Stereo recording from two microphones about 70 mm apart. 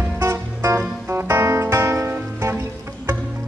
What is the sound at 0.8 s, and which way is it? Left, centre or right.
Music, right.